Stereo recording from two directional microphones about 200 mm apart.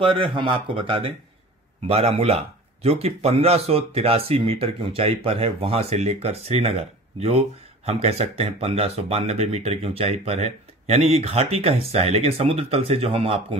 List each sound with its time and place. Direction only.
0.2 s speech: 25° right (ahead or behind)